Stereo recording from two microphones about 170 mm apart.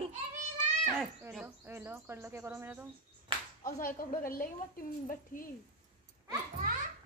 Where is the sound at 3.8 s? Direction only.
55° left (ahead or behind).